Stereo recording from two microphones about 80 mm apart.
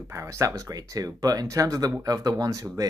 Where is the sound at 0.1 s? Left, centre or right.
Right.